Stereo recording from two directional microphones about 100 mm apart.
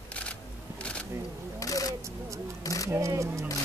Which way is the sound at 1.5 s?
35° left (ahead or behind).